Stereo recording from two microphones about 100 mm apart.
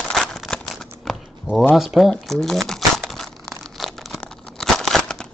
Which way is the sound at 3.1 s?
5° left (ahead or behind).